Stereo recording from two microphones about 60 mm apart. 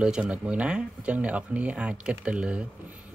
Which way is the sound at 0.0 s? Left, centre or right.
Centre.